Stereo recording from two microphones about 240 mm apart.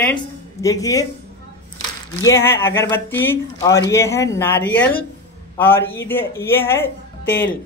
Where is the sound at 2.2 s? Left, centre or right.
Centre.